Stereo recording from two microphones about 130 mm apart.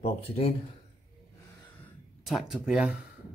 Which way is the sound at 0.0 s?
50° left (ahead or behind).